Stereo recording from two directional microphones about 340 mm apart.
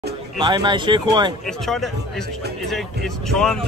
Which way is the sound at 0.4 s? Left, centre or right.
Centre.